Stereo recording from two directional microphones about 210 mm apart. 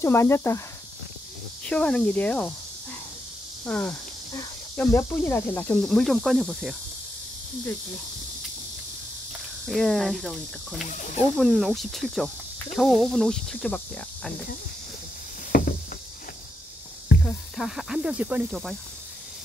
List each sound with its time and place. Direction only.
0.0 s speech: 10° left (ahead or behind)
1.7 s speech: 5° left (ahead or behind)
3.6 s cricket: 5° left (ahead or behind)
4.3 s speech: 15° left (ahead or behind)
9.7 s cricket: centre (ahead or behind)
10.8 s speech: 35° left (ahead or behind)
11.3 s cricket: centre (ahead or behind)
15.5 s a sound: 45° left (ahead or behind)
17.2 s cricket: centre (ahead or behind)